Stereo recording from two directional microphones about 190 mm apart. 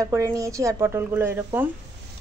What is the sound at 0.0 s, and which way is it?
Speech, 15° right (ahead or behind).